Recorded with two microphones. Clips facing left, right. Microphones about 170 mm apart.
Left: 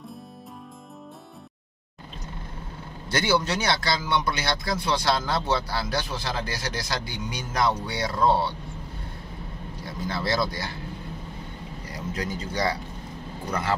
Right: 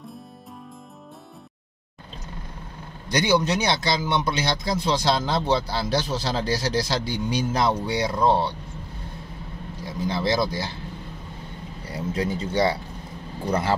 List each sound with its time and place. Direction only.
3.1 s speech: 15° right (ahead or behind)
9.8 s speech: 20° right (ahead or behind)
11.9 s speech: 25° right (ahead or behind)